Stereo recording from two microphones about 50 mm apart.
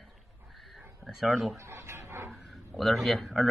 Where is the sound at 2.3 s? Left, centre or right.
Centre.